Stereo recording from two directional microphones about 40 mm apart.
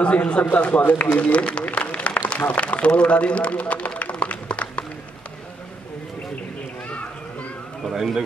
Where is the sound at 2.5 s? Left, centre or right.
Left.